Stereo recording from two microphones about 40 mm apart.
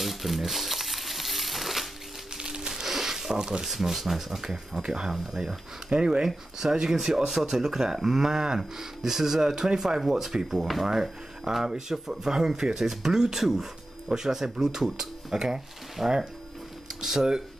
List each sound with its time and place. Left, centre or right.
0.0 s crumpling: centre
2.3 s a sound: centre
3.6 s speech: centre
5.9 s speech: right
6.2 s speech: centre